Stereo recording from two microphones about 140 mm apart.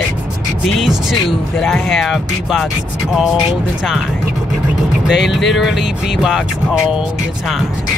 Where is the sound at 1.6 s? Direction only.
Centre (ahead or behind).